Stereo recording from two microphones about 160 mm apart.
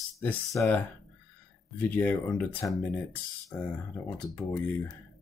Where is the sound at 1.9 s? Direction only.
10° left (ahead or behind).